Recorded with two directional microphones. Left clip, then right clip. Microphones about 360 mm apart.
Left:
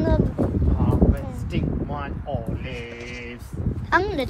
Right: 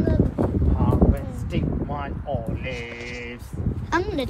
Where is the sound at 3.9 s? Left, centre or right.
Centre.